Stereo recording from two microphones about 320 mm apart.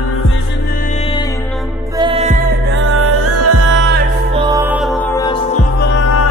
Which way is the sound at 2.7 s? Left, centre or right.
Right.